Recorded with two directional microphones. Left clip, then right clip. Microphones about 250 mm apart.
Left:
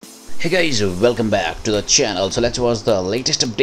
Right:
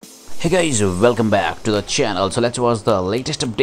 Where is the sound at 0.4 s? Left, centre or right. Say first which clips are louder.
Even; centre.